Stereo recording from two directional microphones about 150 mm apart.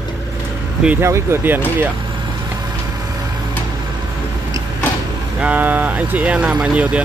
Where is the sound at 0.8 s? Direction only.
15° right (ahead or behind).